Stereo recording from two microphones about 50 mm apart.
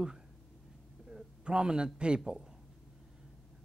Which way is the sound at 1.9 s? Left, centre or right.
Centre.